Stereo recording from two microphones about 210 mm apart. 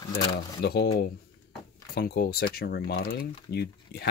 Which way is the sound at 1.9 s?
50° left (ahead or behind).